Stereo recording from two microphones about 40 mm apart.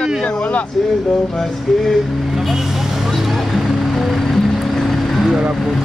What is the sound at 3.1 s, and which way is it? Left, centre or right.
Vehicle, centre.